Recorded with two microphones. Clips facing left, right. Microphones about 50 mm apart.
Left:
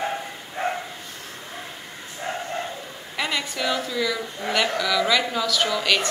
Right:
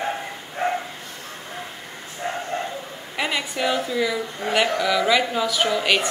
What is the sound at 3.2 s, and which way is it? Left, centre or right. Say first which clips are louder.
A woman's voice: right 2 dB; centre.